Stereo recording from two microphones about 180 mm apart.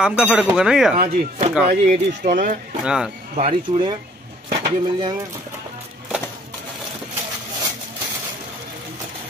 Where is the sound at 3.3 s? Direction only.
40° right (ahead or behind).